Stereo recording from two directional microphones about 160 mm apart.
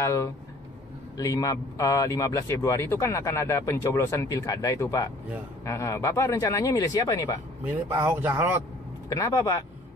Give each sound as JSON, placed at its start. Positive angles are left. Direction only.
{"t": 0.0, "sound": "a man's voice", "side_deg": 20}
{"t": 7.9, "sound": "speech", "side_deg": -15}
{"t": 9.1, "sound": "a man's voice", "side_deg": 20}